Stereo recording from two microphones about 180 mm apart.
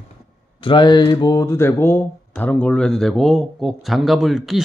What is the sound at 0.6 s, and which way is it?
Speech, 25° left (ahead or behind).